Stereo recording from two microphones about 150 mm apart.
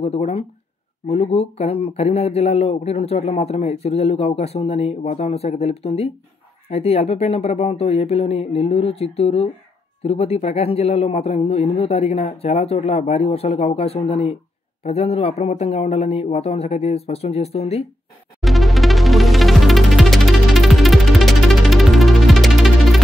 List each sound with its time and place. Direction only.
0.0 s speech: 40° left (ahead or behind)
18.4 s music: centre (ahead or behind)